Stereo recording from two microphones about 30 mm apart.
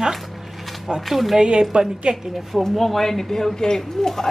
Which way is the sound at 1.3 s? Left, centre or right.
Right.